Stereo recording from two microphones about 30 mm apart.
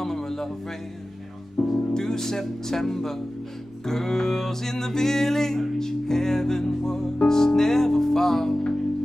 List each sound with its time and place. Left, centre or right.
0.0 s music: centre
1.6 s music: centre